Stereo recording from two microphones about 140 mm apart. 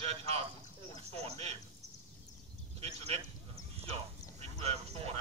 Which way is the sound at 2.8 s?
45° right (ahead or behind).